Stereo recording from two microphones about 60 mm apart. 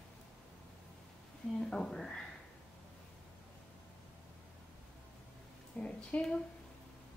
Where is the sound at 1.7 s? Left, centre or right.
Centre.